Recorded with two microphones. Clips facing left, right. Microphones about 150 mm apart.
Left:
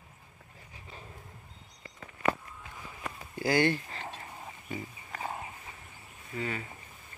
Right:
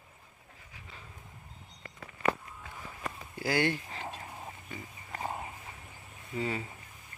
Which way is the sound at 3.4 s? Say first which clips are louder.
Left 3 dB; 10° right (ahead or behind).